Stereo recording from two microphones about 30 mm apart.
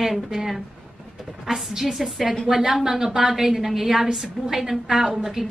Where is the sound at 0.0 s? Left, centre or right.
Centre.